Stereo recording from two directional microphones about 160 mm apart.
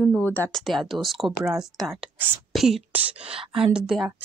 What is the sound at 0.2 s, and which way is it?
Speech, 10° left (ahead or behind).